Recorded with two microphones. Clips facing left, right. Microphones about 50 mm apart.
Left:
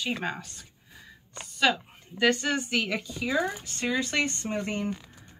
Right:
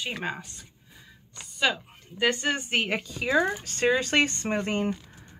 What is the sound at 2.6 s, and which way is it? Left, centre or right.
Speech, right.